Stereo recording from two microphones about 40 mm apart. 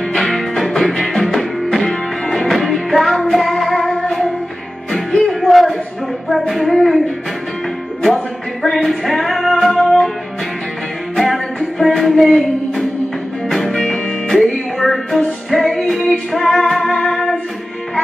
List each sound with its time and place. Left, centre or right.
0.1 s music: centre
1.8 s music: left
2.5 s music: centre
5.4 s a sound: centre
8.7 s music: centre
11.1 s music: centre